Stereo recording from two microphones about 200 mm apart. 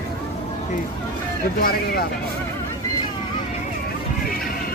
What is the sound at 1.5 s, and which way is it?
Speech, 45° left (ahead or behind).